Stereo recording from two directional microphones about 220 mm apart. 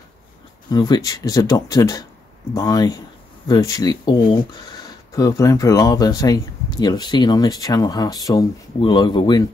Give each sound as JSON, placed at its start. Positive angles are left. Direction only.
{"t": 0.7, "sound": "speech", "side_deg": 20}